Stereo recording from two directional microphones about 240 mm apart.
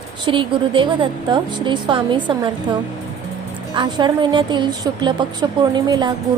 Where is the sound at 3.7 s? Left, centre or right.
Centre.